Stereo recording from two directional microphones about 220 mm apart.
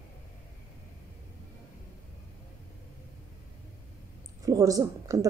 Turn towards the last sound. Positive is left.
turn(degrees=-15)  # may be behind; listen again after turning